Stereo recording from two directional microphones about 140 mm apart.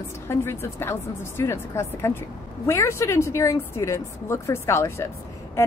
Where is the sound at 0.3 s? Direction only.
15° left (ahead or behind).